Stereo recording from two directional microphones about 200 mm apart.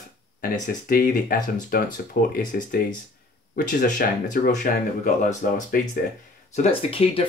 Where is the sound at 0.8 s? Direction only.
45° left (ahead or behind).